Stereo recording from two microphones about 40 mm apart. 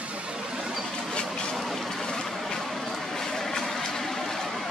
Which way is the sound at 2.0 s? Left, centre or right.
Centre.